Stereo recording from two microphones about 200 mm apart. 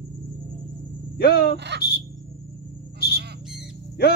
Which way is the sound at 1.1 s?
50° left (ahead or behind).